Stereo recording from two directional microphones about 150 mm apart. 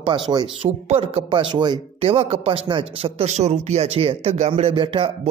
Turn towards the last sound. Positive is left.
turn(degrees=-35)  # may be behind; listen again after turning